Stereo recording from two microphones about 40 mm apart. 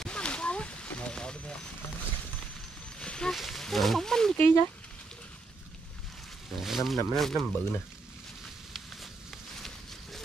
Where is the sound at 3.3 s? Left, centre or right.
Centre.